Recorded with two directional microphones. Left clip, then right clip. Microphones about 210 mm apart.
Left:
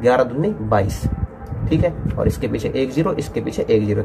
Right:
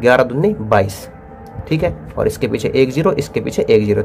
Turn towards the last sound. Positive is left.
turn(degrees=-30)  # may be behind; listen again after turning